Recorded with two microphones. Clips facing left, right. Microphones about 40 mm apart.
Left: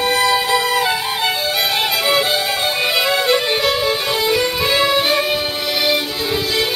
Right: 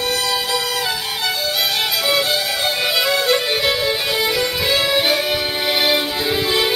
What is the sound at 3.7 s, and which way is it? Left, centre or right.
Music, centre.